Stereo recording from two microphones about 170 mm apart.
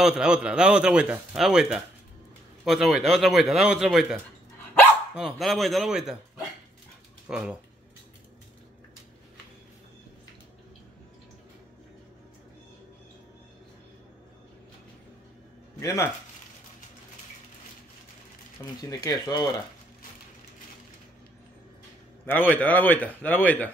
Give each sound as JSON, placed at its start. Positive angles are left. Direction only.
{"t": 0.0, "sound": "speech", "side_deg": -5}
{"t": 15.8, "sound": "speech", "side_deg": 20}
{"t": 18.8, "sound": "speech", "side_deg": 20}
{"t": 22.2, "sound": "a man's voice", "side_deg": 10}